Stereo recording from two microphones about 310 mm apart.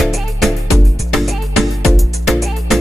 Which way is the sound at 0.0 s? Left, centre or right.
Centre.